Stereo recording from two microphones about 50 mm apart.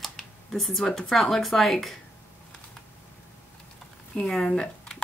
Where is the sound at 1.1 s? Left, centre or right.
Centre.